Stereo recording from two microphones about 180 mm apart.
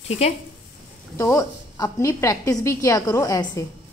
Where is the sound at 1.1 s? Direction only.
15° left (ahead or behind).